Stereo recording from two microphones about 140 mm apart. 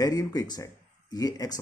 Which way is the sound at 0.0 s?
25° left (ahead or behind).